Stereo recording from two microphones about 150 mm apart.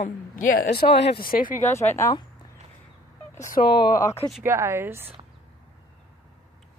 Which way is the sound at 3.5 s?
90° left.